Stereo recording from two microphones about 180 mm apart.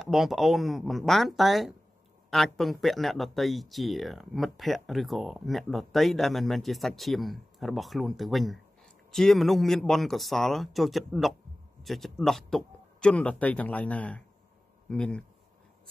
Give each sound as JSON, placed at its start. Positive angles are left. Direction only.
{"t": 0.0, "sound": "speech", "side_deg": 0}